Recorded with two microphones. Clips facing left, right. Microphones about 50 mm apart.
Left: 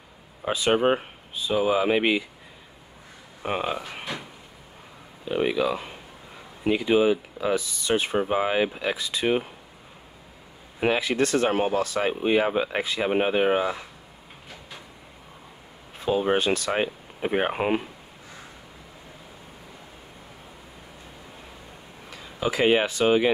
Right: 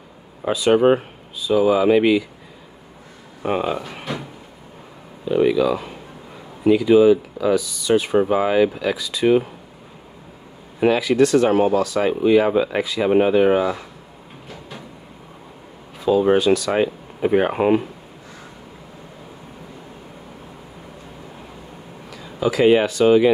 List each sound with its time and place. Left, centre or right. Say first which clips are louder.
0.7 s speech: right 7 dB; centre
1.5 s speech: right 7 dB; left
3.4 s speech: right 6 dB; centre
3.7 s speech: right 5 dB; centre
5.3 s speech: right 7 dB; left
8.3 s speech: right 6 dB; left
11.0 s speech: right 7 dB; left; by 13.7 s centre
16.3 s speech: right 7 dB; left
17.2 s speech: right 7 dB; centre
22.1 s speech: right 6 dB; left